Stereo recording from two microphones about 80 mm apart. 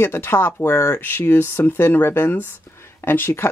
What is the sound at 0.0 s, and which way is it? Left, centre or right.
Speech, left.